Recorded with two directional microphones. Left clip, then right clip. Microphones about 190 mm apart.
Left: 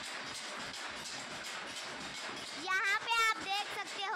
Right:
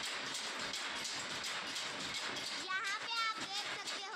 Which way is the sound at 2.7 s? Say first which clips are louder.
Left 9 dB; 40° left (ahead or behind).